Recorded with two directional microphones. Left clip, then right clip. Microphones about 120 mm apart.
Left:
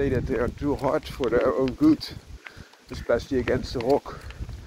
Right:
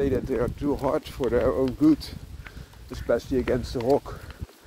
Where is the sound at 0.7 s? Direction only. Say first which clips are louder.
Left 1 dB; 10° right (ahead or behind).